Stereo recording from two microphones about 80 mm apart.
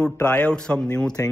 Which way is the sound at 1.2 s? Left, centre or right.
Left.